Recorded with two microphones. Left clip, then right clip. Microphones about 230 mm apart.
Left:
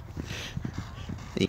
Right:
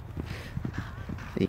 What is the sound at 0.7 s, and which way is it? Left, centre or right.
Clip-clop, left.